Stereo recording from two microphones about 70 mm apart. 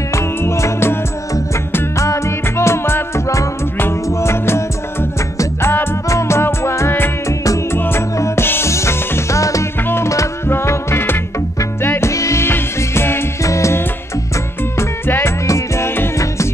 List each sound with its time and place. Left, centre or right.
0.1 s music: left
2.0 s music: left
12.1 s music: left
12.4 s music: left
13.4 s music: left
14.8 s music: left
15.4 s music: left